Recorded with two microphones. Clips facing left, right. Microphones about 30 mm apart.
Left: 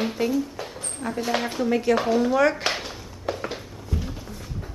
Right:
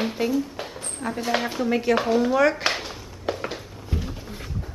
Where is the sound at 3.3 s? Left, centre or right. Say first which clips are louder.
Left 1 dB; centre.